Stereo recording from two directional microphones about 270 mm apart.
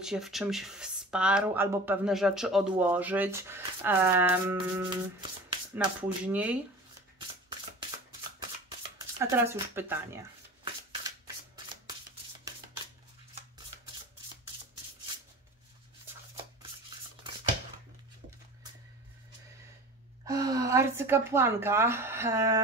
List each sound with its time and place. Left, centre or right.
0.0 s speech: centre
6.2 s speech: centre
8.9 s speech: centre
10.9 s shuffling cards: centre
20.2 s a woman's voice: centre